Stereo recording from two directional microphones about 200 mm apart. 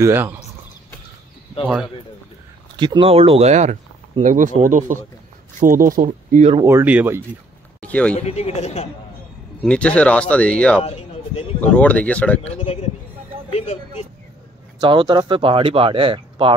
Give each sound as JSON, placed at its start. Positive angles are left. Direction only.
{"t": 0.0, "sound": "speech", "side_deg": -10}
{"t": 2.8, "sound": "speech", "side_deg": -25}
{"t": 6.5, "sound": "speech", "side_deg": -15}
{"t": 7.8, "sound": "speech", "side_deg": 5}
{"t": 8.2, "sound": "speech", "side_deg": 30}
{"t": 9.6, "sound": "speech", "side_deg": 5}
{"t": 10.8, "sound": "speech", "side_deg": 30}
{"t": 11.7, "sound": "speech", "side_deg": 5}
{"t": 12.4, "sound": "speech", "side_deg": 30}
{"t": 14.8, "sound": "speech", "side_deg": -25}